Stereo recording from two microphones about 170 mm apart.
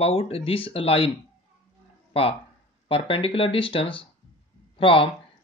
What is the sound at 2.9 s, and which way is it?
Speech, 30° left (ahead or behind).